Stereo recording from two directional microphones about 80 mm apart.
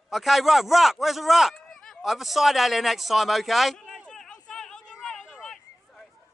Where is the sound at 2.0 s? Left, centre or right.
Centre.